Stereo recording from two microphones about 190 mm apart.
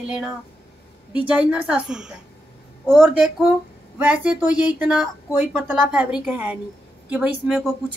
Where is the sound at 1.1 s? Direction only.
5° right (ahead or behind).